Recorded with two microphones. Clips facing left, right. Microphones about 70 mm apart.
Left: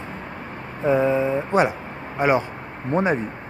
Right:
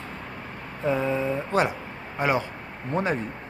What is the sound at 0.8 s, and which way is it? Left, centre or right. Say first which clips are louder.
Speech: left 6 dB; centre.